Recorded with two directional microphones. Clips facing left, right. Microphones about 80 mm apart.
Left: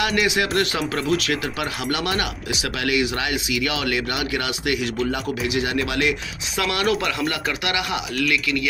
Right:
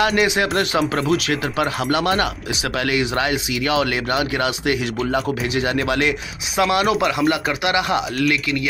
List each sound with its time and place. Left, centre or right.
0.0 s speech: right
6.5 s speech: right